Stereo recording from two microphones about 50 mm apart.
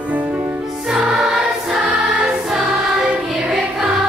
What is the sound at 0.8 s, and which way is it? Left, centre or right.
Choir, centre.